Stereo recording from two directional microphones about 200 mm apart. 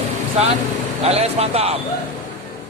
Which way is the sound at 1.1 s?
30° right (ahead or behind).